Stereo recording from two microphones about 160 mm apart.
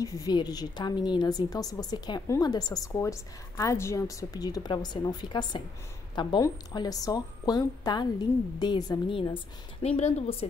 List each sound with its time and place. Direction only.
0.0 s a woman's voice: 20° left (ahead or behind); by 10.3 s 40° left (ahead or behind)